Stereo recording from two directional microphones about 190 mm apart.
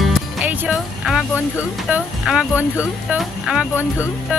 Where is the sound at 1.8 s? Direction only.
5° right (ahead or behind).